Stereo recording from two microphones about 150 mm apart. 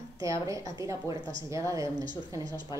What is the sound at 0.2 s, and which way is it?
A woman's voice, 20° right (ahead or behind).